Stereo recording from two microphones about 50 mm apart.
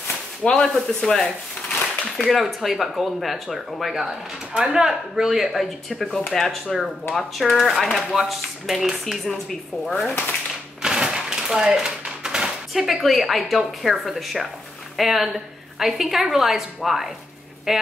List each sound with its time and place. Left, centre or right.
0.4 s a woman's voice: centre
4.0 s a woman's voice: centre
10.8 s a woman's voice: centre